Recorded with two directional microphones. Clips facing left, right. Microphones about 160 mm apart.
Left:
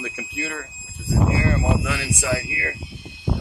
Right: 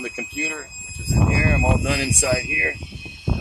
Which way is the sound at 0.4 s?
20° right (ahead or behind).